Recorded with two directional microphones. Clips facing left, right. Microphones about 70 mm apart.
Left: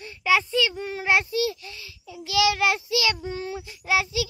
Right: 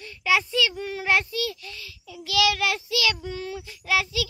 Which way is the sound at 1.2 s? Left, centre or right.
Left.